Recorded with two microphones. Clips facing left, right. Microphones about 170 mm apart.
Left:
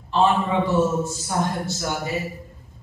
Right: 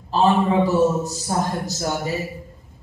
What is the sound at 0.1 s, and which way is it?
A man's voice, 40° right (ahead or behind).